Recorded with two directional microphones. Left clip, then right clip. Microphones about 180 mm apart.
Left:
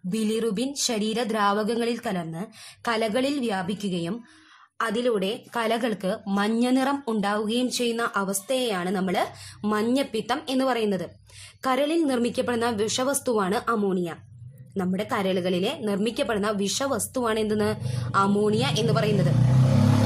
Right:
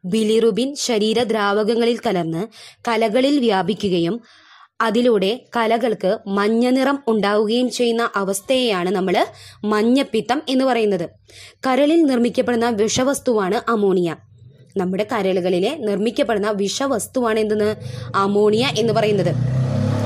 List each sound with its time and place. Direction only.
0.1 s speech: 35° right (ahead or behind)
2.8 s a woman's voice: 25° right (ahead or behind)